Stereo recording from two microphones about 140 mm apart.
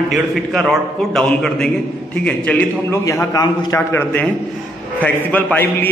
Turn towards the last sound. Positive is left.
turn(degrees=15)  # may be behind; listen again after turning